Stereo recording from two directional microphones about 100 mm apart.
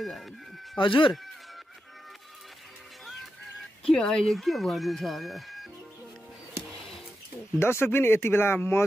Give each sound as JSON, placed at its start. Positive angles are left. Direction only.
{"t": 0.0, "sound": "speech", "side_deg": 0}
{"t": 0.7, "sound": "speech", "side_deg": 55}
{"t": 3.8, "sound": "speech", "side_deg": 5}
{"t": 7.5, "sound": "speech", "side_deg": 25}